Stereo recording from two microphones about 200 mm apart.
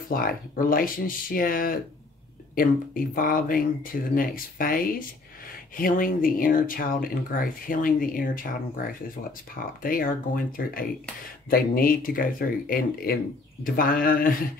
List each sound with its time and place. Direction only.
0.1 s speech: 45° left (ahead or behind)
9.6 s speech: 45° left (ahead or behind)